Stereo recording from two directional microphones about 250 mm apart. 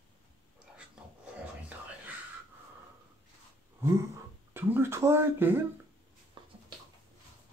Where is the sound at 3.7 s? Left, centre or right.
Centre.